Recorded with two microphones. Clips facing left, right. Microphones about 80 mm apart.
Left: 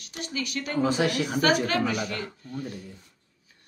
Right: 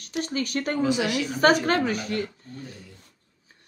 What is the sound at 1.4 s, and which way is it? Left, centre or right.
Speech, right.